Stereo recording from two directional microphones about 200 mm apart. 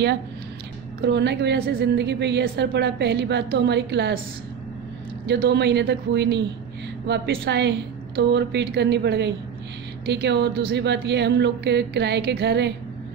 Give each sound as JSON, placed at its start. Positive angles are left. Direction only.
{"t": 1.0, "sound": "a woman's voice", "side_deg": -60}
{"t": 5.2, "sound": "a woman's voice", "side_deg": -55}